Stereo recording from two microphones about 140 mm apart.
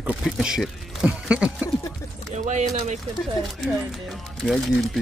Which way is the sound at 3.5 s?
Centre (ahead or behind).